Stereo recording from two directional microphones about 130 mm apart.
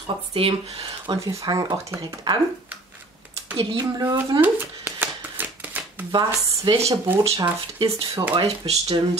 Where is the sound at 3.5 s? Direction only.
35° right (ahead or behind).